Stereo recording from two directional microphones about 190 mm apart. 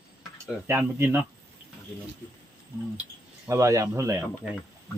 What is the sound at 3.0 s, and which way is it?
Speech, 15° right (ahead or behind).